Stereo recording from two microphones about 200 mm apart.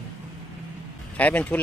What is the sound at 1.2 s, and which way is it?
Speech, 10° left (ahead or behind).